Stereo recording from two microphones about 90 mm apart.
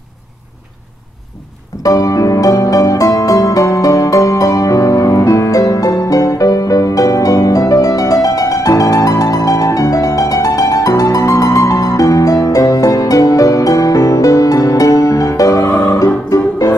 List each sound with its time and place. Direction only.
1.8 s music: 40° left (ahead or behind)